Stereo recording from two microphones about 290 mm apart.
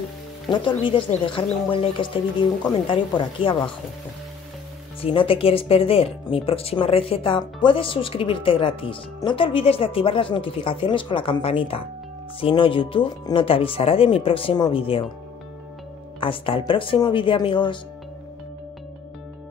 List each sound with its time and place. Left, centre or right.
0.5 s speech: centre
5.0 s speech: centre
16.2 s speech: centre